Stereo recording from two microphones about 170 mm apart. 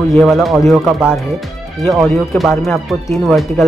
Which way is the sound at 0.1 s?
Centre (ahead or behind).